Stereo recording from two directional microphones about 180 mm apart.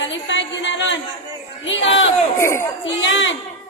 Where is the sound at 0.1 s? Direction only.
90° left.